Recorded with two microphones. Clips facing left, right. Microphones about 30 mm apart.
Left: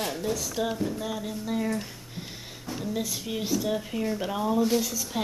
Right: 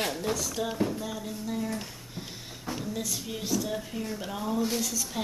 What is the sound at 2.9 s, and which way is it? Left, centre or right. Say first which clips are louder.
A woman's voice: left 3 dB; centre.